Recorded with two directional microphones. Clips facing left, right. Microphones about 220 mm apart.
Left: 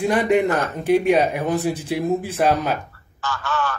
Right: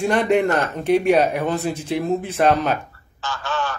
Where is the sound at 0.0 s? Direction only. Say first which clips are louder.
Even; 10° left (ahead or behind).